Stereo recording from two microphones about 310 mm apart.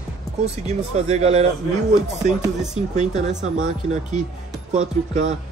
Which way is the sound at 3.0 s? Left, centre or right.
Right.